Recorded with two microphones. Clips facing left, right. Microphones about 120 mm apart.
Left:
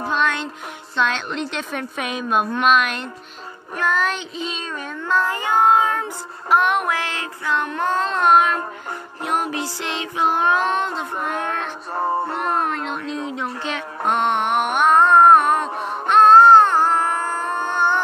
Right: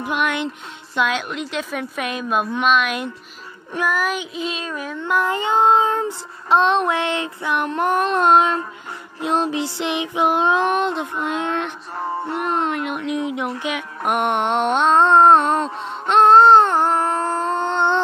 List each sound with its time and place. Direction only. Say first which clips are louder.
0.1 s music: right 1 dB; 15° right (ahead or behind)
0.9 s a woman's voice: right 1 dB; 10° right (ahead or behind)
5.0 s child singing: right 1 dB; 15° right (ahead or behind)
11.9 s music: left 7 dB; 60° left (ahead or behind)
12.8 s music: right 3 dB; 15° right (ahead or behind)